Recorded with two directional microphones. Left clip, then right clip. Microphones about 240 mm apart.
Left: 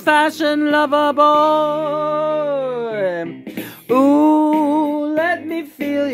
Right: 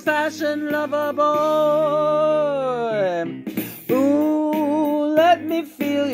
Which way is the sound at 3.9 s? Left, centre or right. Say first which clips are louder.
Left 6 dB; left.